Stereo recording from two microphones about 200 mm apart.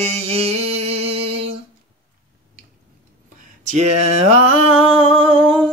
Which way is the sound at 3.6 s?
35° right (ahead or behind).